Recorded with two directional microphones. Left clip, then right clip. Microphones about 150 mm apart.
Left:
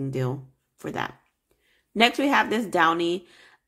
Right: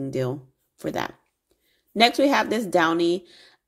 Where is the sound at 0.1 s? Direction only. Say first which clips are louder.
Right 3 dB; 25° right (ahead or behind).